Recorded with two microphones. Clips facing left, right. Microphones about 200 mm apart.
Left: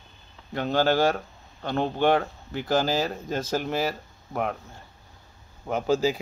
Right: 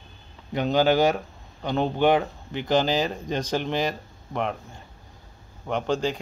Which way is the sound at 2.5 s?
5° left (ahead or behind).